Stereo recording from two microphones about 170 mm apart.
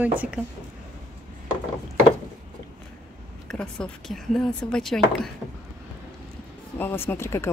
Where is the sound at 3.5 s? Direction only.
5° left (ahead or behind).